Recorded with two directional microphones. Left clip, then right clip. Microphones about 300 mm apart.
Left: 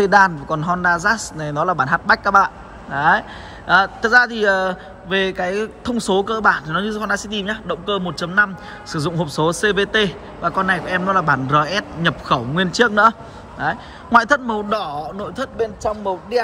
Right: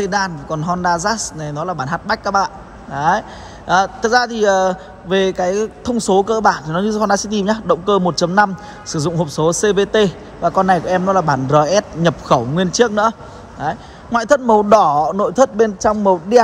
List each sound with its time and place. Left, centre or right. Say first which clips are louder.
0.0 s a man's voice: left 6 dB; centre; by 16.3 s right